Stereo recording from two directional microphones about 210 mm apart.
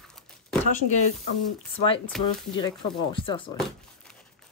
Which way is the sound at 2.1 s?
Centre (ahead or behind).